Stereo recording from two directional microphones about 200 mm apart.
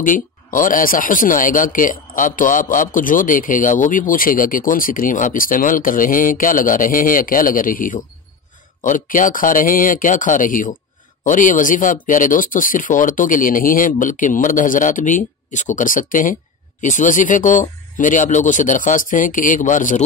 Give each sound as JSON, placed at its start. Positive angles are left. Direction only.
{"t": 0.0, "sound": "speech", "side_deg": 40}